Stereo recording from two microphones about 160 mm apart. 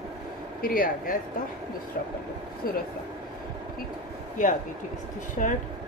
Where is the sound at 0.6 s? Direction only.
60° left (ahead or behind).